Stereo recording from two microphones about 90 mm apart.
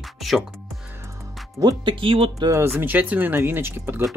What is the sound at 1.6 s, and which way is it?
Speech, 60° right (ahead or behind).